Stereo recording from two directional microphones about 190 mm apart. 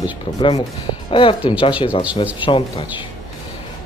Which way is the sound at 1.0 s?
30° left (ahead or behind).